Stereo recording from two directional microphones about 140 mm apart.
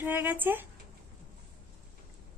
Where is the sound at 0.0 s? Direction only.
15° right (ahead or behind).